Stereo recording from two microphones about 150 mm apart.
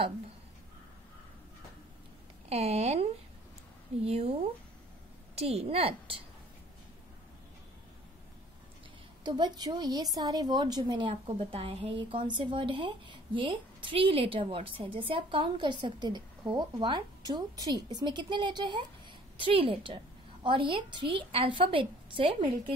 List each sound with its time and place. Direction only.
2.5 s a woman's voice: 45° right (ahead or behind)
9.2 s a woman's voice: 30° right (ahead or behind)